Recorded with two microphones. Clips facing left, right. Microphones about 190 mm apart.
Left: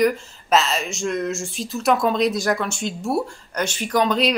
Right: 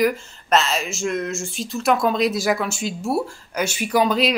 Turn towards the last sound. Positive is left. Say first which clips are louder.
# right 1 dB
turn(degrees=-5)  # may be behind; listen again after turning